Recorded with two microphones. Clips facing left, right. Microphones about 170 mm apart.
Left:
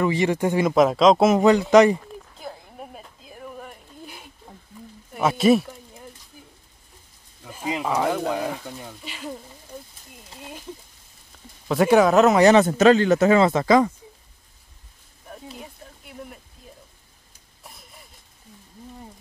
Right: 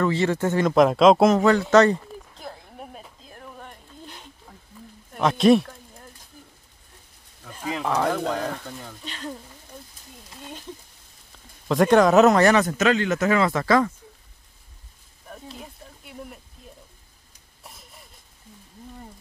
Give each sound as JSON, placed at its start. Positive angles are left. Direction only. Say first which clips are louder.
{"t": 0.0, "sound": "speech", "louder": "left 1 dB", "side_deg": 15}
{"t": 1.3, "sound": "speech", "louder": "left 2 dB", "side_deg": 20}
{"t": 2.0, "sound": "a sound", "louder": "even", "side_deg": 0}
{"t": 7.4, "sound": "speech", "louder": "left 1 dB", "side_deg": 15}
{"t": 11.6, "sound": "speech", "louder": "even", "side_deg": 5}
{"t": 12.4, "sound": "speech", "louder": "left 3 dB", "side_deg": 25}
{"t": 15.2, "sound": "a sound", "louder": "left 1 dB", "side_deg": 0}